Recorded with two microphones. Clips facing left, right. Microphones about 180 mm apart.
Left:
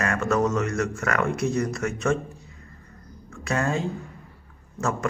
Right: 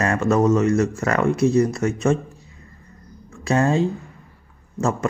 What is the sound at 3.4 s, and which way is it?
Speech, 30° right (ahead or behind).